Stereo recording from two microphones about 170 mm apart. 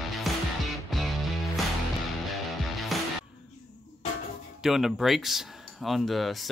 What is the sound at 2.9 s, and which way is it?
Music, centre (ahead or behind).